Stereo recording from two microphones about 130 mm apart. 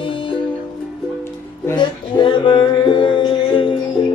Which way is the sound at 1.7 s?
40° left (ahead or behind).